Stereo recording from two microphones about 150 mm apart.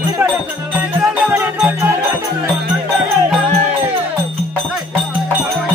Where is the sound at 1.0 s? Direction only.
15° right (ahead or behind).